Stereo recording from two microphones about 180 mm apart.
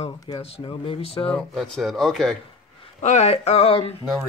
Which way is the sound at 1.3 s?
Centre (ahead or behind).